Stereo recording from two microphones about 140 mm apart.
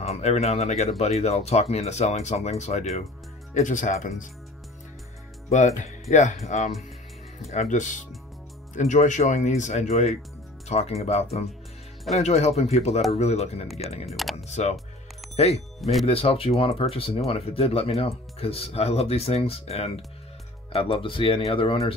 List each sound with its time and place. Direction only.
0.0 s speech: 50° left (ahead or behind)
5.5 s speech: 55° left (ahead or behind)
14.0 s speech: centre (ahead or behind)
14.3 s speech: 55° left (ahead or behind)